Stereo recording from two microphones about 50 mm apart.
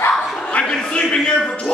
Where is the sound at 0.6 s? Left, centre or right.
Centre.